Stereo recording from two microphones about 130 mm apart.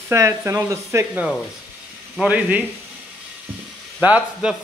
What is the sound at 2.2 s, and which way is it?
Speech, 10° right (ahead or behind).